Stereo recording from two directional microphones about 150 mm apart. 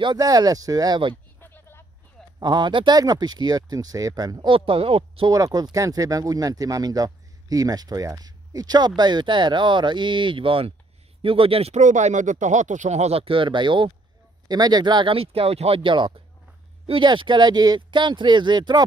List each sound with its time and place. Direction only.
0.0 s speech: 25° right (ahead or behind)
1.4 s a sound: 15° left (ahead or behind)
2.4 s speech: 30° right (ahead or behind)
5.3 s speech: 25° right (ahead or behind)